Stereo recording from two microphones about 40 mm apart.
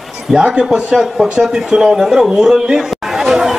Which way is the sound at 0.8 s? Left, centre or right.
Centre.